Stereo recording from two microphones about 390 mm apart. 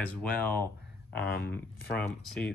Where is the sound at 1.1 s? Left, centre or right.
Left.